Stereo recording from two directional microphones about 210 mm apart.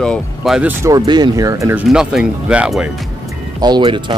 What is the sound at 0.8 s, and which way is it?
Speech, 20° right (ahead or behind).